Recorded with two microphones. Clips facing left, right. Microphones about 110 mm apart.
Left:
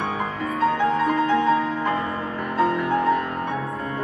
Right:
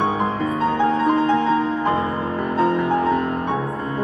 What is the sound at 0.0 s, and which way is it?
Music, 25° right (ahead or behind).